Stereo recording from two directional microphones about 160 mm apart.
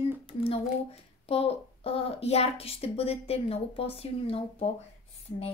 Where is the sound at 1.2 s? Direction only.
40° left (ahead or behind).